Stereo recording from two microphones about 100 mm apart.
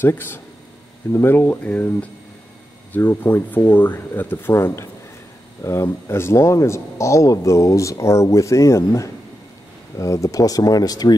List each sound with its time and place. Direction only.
0.0 s speech: 20° left (ahead or behind); by 11.1 s 40° left (ahead or behind)